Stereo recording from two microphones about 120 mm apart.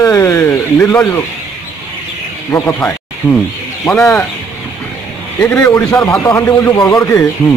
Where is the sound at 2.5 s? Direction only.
20° left (ahead or behind).